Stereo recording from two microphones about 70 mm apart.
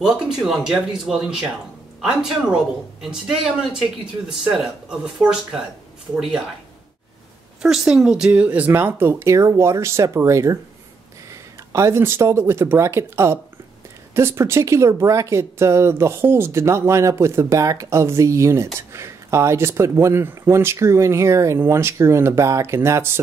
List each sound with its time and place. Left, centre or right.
0.0 s speech: centre
7.6 s speech: centre; by 23.1 s right